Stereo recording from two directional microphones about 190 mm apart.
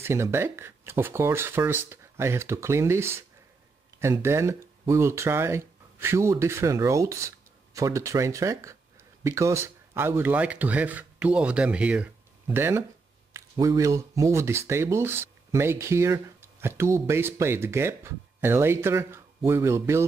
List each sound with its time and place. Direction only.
0.0 s speech: 15° right (ahead or behind)